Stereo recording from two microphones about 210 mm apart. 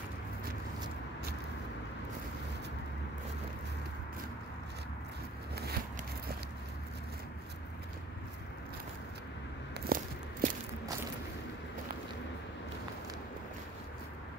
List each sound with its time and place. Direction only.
9.8 s walk: 45° right (ahead or behind)